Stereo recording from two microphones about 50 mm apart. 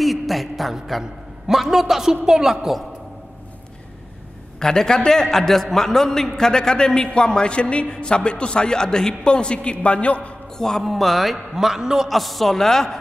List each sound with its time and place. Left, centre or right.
0.0 s a sound: centre
1.5 s a man's voice: centre
4.6 s a man's voice: centre
10.8 s a man's voice: centre
12.1 s a man's voice: centre